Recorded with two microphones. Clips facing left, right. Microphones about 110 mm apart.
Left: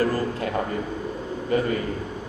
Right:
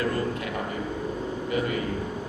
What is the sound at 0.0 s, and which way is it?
Music, 35° left (ahead or behind).